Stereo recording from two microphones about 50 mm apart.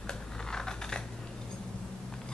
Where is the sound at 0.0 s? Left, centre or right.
Centre.